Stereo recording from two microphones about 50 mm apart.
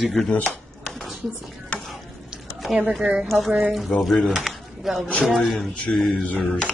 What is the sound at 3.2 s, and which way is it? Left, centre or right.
Speech, centre.